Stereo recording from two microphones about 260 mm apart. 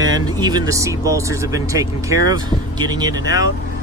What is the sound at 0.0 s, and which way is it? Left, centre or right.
Speech, centre.